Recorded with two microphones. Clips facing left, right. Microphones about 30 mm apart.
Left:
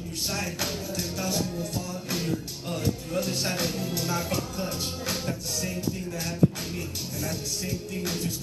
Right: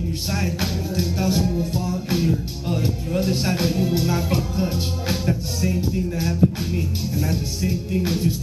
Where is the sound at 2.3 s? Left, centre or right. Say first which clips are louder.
Right 7 dB; right.